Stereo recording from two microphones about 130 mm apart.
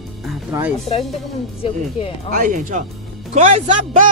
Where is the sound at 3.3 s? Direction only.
55° right (ahead or behind).